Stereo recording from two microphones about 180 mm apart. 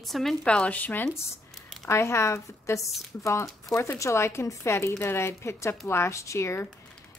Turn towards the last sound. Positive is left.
turn(degrees=15)  # may be behind; listen again after turning